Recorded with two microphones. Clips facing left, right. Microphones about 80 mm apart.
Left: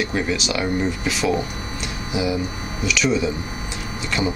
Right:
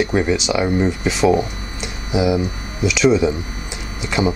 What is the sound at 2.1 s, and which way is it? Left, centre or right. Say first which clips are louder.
Speech: right 6 dB; centre.